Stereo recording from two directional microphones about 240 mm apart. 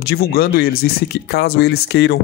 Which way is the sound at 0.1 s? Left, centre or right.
Left.